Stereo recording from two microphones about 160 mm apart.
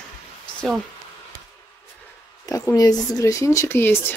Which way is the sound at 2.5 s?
20° left (ahead or behind).